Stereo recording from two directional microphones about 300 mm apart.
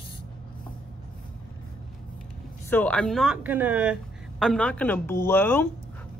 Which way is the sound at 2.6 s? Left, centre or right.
Centre.